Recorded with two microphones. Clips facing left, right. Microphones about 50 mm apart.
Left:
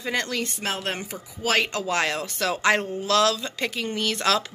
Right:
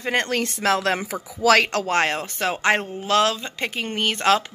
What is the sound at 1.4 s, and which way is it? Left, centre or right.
Speech, right.